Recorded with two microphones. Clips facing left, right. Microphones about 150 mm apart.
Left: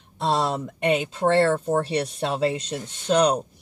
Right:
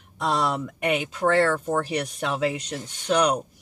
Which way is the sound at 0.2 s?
30° left (ahead or behind).